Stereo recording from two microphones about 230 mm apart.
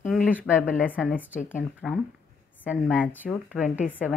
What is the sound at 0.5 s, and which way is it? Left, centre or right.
A woman's voice, centre.